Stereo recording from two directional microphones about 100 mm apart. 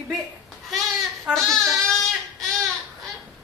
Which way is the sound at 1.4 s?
5° left (ahead or behind).